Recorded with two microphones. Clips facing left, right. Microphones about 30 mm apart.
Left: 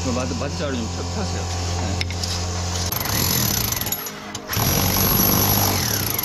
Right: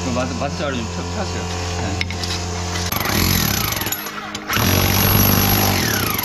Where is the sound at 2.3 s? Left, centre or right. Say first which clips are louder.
Right 3 dB; right.